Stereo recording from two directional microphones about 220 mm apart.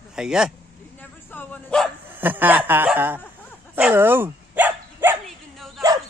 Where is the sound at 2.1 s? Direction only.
10° right (ahead or behind).